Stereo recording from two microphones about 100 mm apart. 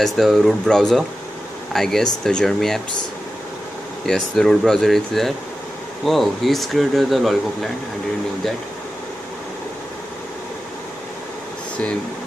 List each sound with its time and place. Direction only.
0.0 s speech: centre (ahead or behind)
4.0 s speech: 5° left (ahead or behind)